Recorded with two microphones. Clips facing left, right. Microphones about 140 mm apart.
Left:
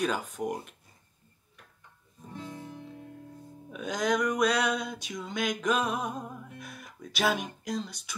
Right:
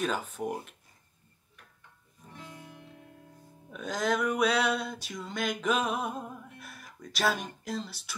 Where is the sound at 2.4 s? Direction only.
30° left (ahead or behind).